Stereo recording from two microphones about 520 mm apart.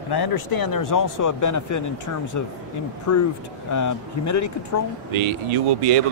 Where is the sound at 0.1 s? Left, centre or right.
Left.